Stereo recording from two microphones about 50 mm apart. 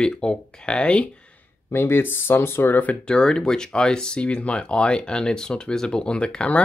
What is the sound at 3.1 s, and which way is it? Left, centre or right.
Speech, centre.